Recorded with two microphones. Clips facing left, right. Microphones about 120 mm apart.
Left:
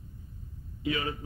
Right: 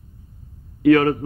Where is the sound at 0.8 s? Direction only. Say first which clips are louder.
Right 18 dB; 65° right (ahead or behind).